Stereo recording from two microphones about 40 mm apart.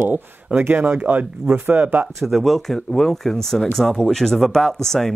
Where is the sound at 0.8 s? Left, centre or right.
Right.